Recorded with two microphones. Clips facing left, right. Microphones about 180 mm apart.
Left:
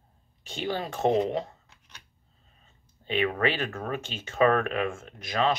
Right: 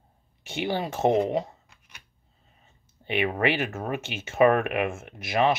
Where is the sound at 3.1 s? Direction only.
15° right (ahead or behind).